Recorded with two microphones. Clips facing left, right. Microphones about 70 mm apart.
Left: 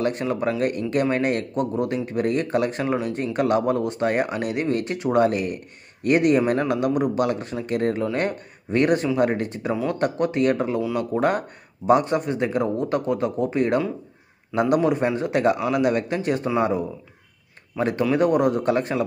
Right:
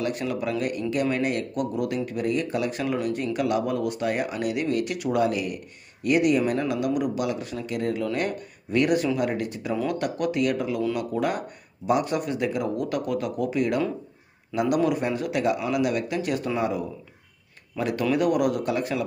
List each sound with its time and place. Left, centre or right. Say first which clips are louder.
0.0 s speech: left 4 dB; left
1.5 s a man's voice: left 3 dB; left